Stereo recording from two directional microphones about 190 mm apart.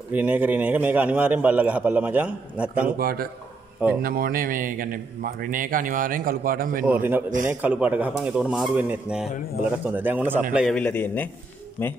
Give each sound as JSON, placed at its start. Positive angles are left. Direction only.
{"t": 0.1, "sound": "a man's voice", "side_deg": -10}
{"t": 3.0, "sound": "speech", "side_deg": -50}
{"t": 6.9, "sound": "a man's voice", "side_deg": -10}
{"t": 10.8, "sound": "a man's voice", "side_deg": 10}